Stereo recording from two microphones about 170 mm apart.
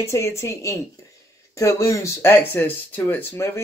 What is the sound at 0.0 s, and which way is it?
Speech, 15° left (ahead or behind).